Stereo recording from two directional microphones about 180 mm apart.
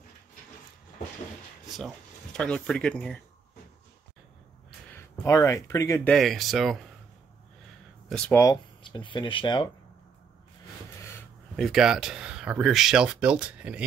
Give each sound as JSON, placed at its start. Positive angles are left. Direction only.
{"t": 2.3, "sound": "speech", "side_deg": 5}
{"t": 4.9, "sound": "speech", "side_deg": 15}
{"t": 6.1, "sound": "speech", "side_deg": 0}
{"t": 8.1, "sound": "speech", "side_deg": 5}
{"t": 8.4, "sound": "speech", "side_deg": 20}
{"t": 11.5, "sound": "speech", "side_deg": 0}